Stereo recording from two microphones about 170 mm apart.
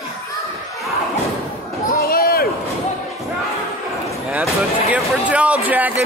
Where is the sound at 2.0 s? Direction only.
60° left (ahead or behind).